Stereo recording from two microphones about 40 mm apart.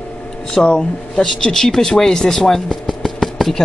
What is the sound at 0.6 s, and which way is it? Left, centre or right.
Speech, left.